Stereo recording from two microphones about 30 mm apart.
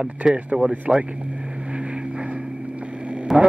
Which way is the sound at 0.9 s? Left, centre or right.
Right.